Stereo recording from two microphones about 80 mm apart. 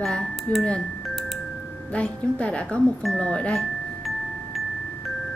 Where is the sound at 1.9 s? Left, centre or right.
Centre.